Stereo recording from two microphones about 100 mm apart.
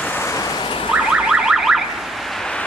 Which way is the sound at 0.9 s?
5° right (ahead or behind).